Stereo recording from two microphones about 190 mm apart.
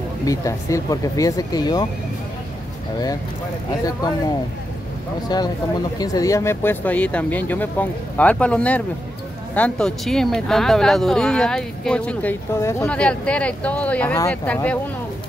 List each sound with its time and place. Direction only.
0.2 s speech: 15° left (ahead or behind)
5.3 s speech: 20° left (ahead or behind)